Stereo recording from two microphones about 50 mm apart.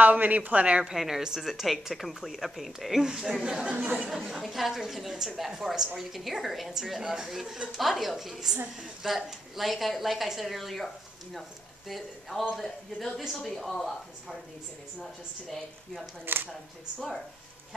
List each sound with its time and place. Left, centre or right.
0.0 s speech: right
0.9 s speech: centre
3.7 s a sound: right
4.4 s a woman's voice: centre
11.9 s speech: centre
16.3 s speech: right